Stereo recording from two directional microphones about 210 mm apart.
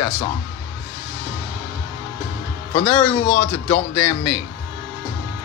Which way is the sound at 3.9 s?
55° left (ahead or behind).